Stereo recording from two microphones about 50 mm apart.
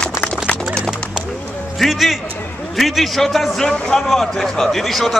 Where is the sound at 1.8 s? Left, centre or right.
Centre.